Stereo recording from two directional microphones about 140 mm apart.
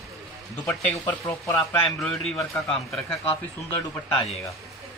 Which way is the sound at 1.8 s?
5° left (ahead or behind).